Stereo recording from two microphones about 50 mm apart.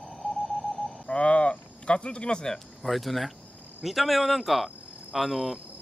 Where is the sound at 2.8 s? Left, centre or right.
Centre.